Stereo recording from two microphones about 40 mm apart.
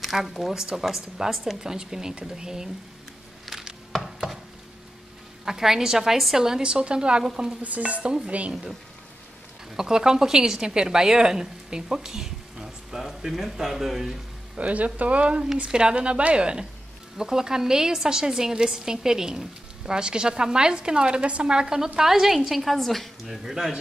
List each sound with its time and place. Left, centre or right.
0.0 s a woman's voice: centre
5.4 s a woman's voice: centre
7.6 s speech: right
9.8 s speech: centre
14.6 s a woman's voice: right
17.2 s a woman's voice: centre